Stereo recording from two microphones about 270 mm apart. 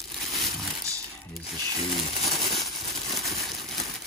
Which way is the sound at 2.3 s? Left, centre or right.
Centre.